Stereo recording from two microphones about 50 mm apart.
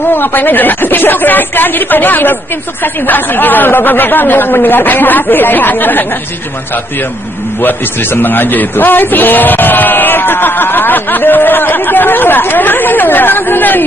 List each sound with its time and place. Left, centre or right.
0.1 s speech: left
7.6 s speech: left